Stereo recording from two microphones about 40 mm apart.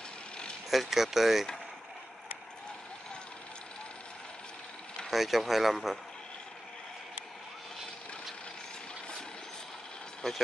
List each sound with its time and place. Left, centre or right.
0.7 s speech: centre
5.1 s speech: centre
10.2 s speech: centre